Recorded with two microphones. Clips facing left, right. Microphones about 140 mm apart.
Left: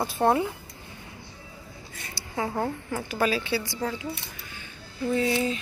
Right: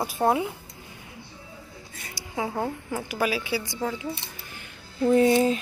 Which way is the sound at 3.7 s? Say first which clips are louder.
Right 1 dB; 20° right (ahead or behind).